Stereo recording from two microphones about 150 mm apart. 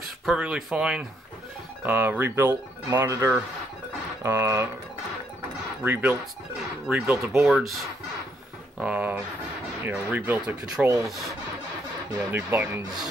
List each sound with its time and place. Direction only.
0.2 s speech: 5° right (ahead or behind)
5.9 s speech: 10° right (ahead or behind)
8.7 s speech: 10° right (ahead or behind)
12.1 s speech: 15° right (ahead or behind)